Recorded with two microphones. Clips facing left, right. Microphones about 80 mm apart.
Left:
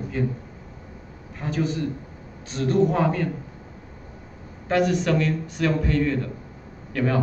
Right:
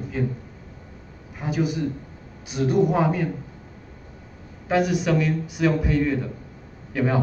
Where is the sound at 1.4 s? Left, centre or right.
Centre.